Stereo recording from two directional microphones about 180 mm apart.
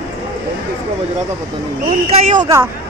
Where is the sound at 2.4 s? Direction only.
15° right (ahead or behind).